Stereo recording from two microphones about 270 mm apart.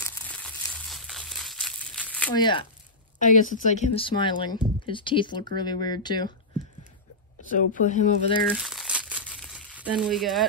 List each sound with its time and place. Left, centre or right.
0.0 s crumpling: centre
2.3 s speech: centre
3.2 s a woman's voice: left
7.5 s a woman's voice: left
8.5 s crumpling: centre